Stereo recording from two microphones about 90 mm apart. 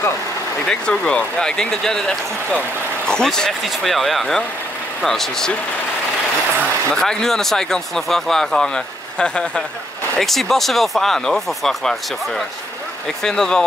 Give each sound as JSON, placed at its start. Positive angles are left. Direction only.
{"t": 0.7, "sound": "speech", "side_deg": 10}
{"t": 6.9, "sound": "speech", "side_deg": 5}